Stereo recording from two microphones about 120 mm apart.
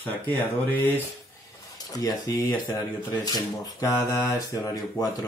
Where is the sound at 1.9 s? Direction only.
30° left (ahead or behind).